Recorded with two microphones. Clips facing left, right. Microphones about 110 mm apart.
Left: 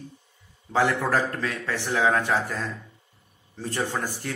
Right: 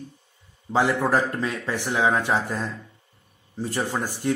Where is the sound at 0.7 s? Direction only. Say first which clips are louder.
Right 2 dB; 20° right (ahead or behind).